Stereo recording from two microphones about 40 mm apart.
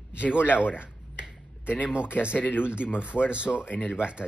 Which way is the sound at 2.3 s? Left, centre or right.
Left.